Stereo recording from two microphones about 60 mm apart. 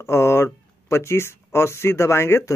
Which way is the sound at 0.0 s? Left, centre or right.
Left.